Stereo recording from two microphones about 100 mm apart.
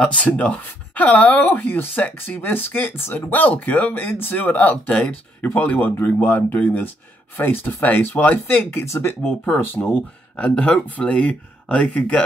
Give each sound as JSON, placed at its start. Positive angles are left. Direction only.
{"t": 0.0, "sound": "speech", "side_deg": 15}